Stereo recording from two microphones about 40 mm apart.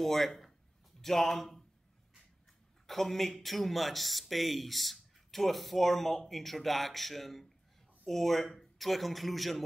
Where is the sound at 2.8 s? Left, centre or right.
Centre.